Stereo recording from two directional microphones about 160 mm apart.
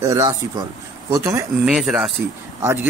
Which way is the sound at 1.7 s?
5° right (ahead or behind).